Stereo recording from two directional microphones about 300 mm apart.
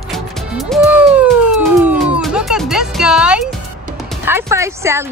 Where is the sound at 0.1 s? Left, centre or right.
Centre.